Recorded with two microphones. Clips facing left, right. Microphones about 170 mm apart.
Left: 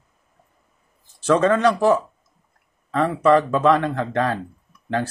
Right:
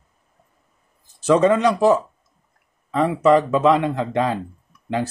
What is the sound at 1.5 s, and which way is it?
Speech, 15° right (ahead or behind).